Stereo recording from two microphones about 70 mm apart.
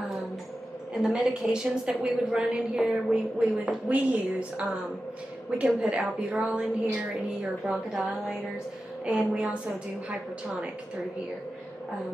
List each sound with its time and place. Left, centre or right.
1.0 s a woman's voice: centre
5.8 s a woman's voice: centre
7.6 s a woman's voice: centre
9.0 s a woman's voice: centre